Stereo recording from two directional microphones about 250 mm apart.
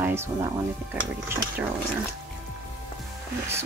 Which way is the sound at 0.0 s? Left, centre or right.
Centre.